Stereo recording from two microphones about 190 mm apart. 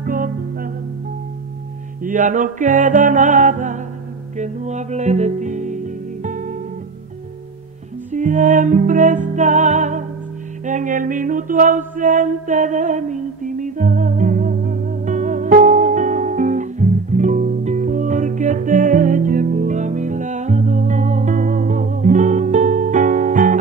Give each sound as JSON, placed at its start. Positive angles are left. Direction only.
{"t": 0.0, "sound": "music", "side_deg": -50}
{"t": 2.0, "sound": "music", "side_deg": -40}
{"t": 8.1, "sound": "music", "side_deg": -40}